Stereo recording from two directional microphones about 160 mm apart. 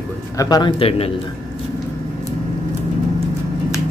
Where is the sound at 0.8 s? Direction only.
35° left (ahead or behind).